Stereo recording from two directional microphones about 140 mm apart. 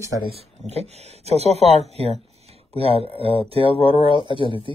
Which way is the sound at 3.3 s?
40° right (ahead or behind).